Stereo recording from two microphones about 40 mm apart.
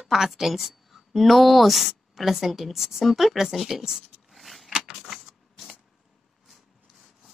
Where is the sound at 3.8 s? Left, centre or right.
Centre.